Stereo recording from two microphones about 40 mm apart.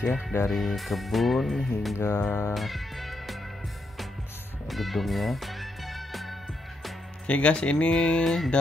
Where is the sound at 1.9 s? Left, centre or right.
Left.